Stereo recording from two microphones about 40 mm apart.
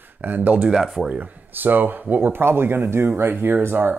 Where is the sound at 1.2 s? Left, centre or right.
Right.